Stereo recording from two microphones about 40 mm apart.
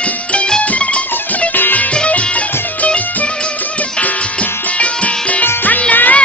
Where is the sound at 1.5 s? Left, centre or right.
Left.